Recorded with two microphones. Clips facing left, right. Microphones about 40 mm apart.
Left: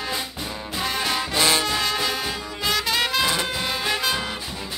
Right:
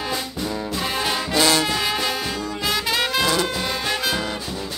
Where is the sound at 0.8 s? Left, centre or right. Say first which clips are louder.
Even; centre.